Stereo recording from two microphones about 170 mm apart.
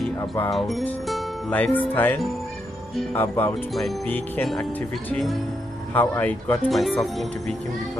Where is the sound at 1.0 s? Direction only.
Centre (ahead or behind).